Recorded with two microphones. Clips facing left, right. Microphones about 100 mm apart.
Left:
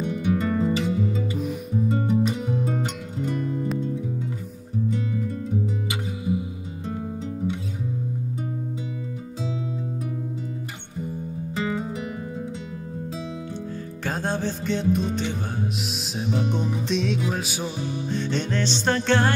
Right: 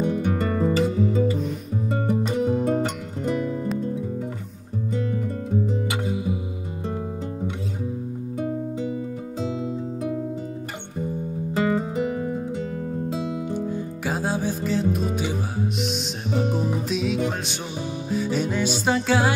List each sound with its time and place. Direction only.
0.0 s music: 40° right (ahead or behind)
2.6 s music: 65° right (ahead or behind)
11.5 s music: 45° right (ahead or behind)
13.7 s music: 15° right (ahead or behind)
14.1 s music: 5° right (ahead or behind)
18.1 s music: 5° right (ahead or behind)